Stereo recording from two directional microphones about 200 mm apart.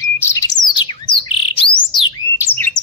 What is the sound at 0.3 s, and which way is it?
Bird, 20° left (ahead or behind).